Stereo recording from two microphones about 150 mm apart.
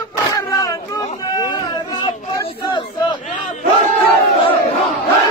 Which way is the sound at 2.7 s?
30° left (ahead or behind).